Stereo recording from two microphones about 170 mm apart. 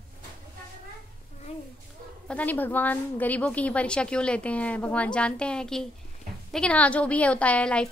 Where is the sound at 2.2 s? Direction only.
10° left (ahead or behind).